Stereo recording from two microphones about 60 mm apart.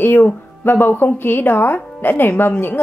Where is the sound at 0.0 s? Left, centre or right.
Left.